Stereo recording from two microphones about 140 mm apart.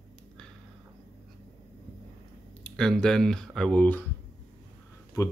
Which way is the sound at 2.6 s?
5° left (ahead or behind).